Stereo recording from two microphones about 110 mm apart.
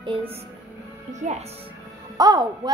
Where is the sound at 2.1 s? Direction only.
35° right (ahead or behind).